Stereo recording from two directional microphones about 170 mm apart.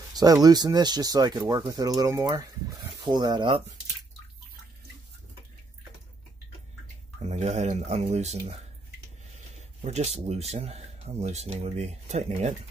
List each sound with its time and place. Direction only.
0.1 s speech: 20° right (ahead or behind)
7.2 s speech: 40° right (ahead or behind)
9.8 s speech: 40° right (ahead or behind)